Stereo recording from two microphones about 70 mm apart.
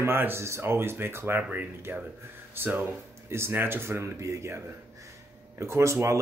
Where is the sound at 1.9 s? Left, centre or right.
Right.